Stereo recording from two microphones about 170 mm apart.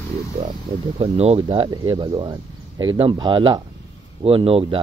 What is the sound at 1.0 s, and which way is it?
Speech, 35° right (ahead or behind).